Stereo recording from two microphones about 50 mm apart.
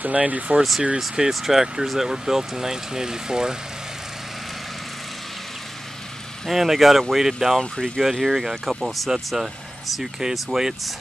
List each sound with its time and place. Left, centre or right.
0.0 s speech: right
0.6 s speech: centre
6.4 s speech: centre
7.7 s speech: centre
8.0 s speech: centre